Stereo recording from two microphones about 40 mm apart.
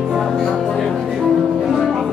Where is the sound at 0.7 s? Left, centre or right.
Centre.